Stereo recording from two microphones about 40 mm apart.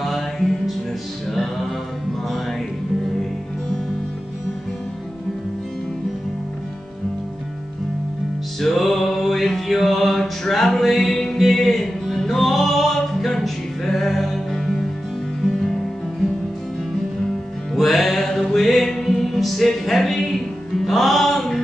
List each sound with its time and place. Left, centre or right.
0.0 s music: centre
8.5 s music: centre
17.7 s music: centre